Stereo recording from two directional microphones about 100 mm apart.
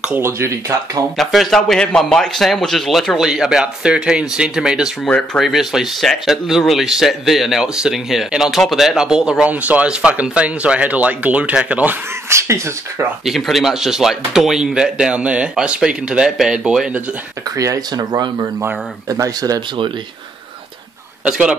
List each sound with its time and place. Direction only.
0.1 s speech: 25° right (ahead or behind)
1.1 s speech: centre (ahead or behind)
5.0 s speech: 5° left (ahead or behind); by 12.0 s 15° right (ahead or behind)
12.3 s speech: 30° right (ahead or behind)
13.2 s speech: centre (ahead or behind)
17.6 s speech: 40° right (ahead or behind)
19.0 s speech: 35° right (ahead or behind)
21.2 s speech: 10° right (ahead or behind)